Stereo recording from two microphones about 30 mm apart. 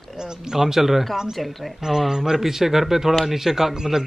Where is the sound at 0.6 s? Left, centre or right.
Centre.